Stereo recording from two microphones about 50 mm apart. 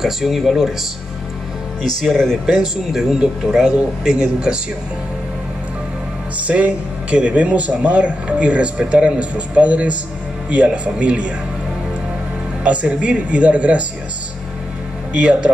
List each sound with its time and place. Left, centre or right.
0.0 s speech: centre
1.8 s speech: centre
2.6 s speech: centre
6.3 s speech: right
12.6 s speech: right
15.1 s speech: right